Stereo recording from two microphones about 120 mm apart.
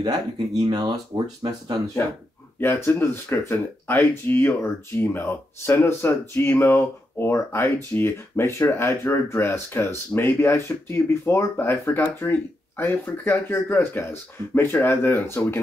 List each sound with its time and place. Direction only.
0.0 s speech: 35° right (ahead or behind)
2.6 s speech: 20° left (ahead or behind)